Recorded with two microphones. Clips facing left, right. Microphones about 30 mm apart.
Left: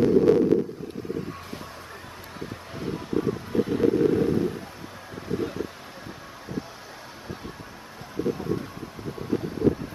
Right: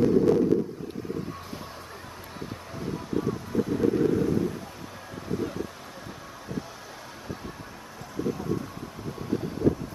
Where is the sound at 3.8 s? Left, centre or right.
Left.